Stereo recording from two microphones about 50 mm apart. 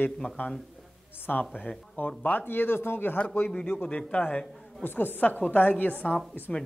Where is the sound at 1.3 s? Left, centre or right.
Centre.